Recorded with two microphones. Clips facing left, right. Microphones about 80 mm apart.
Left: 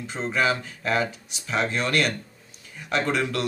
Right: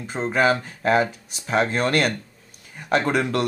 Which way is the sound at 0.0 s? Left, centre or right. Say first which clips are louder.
Right 4 dB; right.